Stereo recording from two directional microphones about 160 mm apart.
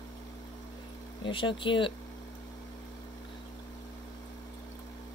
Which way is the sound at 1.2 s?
30° left (ahead or behind).